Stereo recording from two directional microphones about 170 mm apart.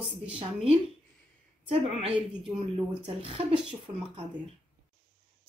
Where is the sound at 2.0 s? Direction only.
35° right (ahead or behind).